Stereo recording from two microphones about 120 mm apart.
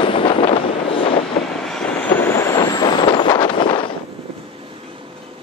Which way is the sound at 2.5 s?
35° left (ahead or behind).